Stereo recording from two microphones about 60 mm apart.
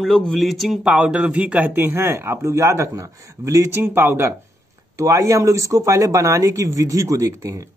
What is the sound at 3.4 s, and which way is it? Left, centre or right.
Speech, right.